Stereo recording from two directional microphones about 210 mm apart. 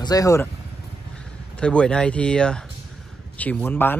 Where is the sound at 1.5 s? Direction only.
5° left (ahead or behind).